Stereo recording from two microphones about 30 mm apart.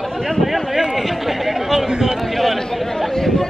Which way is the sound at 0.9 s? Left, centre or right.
Centre.